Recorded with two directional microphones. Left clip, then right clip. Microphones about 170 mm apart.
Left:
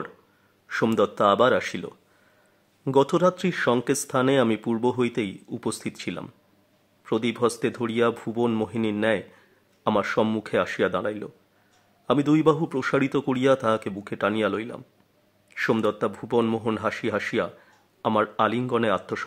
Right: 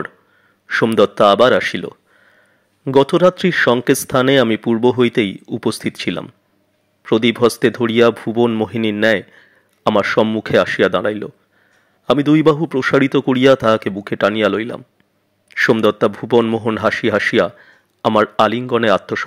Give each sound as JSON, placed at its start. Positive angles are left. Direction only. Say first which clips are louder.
{"t": 0.7, "sound": "speech", "louder": "right 9 dB", "side_deg": -20}
{"t": 9.0, "sound": "a sound", "louder": "right 11 dB", "side_deg": -30}
{"t": 10.4, "sound": "speech", "louder": "right 10 dB", "side_deg": -25}